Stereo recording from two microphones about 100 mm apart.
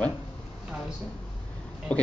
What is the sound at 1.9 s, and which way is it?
Speech, 15° left (ahead or behind).